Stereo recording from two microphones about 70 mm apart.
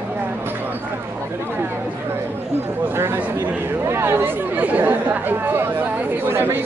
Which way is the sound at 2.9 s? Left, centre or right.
Right.